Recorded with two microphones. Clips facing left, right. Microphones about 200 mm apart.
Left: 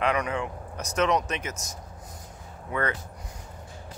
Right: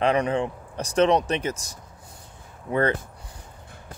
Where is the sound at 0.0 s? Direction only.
30° right (ahead or behind).